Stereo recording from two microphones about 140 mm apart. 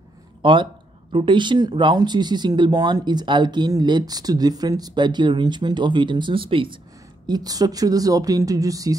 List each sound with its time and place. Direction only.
0.4 s speech: 35° right (ahead or behind)